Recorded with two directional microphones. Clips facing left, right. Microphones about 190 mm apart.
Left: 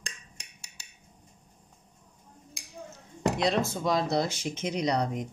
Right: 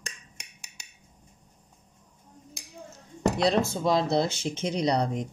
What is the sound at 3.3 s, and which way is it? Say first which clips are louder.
Speech: right 4 dB; 30° right (ahead or behind).